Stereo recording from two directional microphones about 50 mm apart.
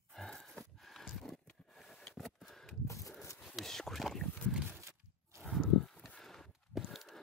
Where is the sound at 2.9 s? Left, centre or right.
Left.